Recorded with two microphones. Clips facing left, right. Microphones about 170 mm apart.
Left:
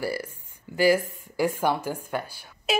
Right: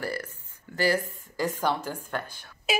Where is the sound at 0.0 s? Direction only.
10° left (ahead or behind).